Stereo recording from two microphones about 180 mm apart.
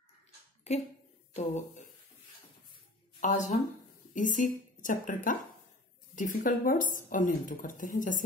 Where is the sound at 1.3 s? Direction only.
40° left (ahead or behind).